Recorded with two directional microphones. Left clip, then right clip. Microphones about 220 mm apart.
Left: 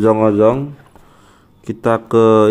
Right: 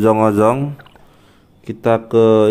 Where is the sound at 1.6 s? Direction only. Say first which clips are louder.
Even; 5° left (ahead or behind).